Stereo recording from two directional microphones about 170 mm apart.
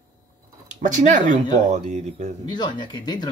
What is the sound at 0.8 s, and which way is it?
Speech, 45° right (ahead or behind).